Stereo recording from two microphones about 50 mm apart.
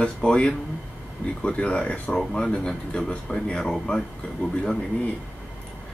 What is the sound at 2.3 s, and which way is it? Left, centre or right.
Speech, centre.